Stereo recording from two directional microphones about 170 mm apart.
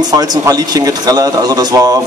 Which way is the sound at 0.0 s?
25° right (ahead or behind).